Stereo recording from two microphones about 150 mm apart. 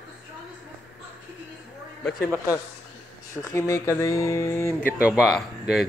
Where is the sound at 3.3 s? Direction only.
20° left (ahead or behind).